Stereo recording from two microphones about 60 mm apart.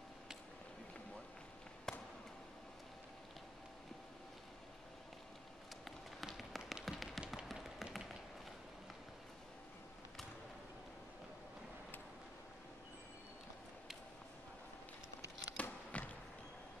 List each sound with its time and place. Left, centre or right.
1.9 s basketball bounce: centre
5.9 s tap: centre
15.5 s a sound: left